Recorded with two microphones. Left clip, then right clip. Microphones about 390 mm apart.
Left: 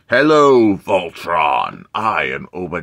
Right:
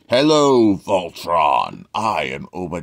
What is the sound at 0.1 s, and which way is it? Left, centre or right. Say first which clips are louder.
Speech: left 3 dB; centre.